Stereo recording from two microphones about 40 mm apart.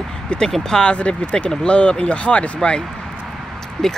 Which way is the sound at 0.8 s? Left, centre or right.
Left.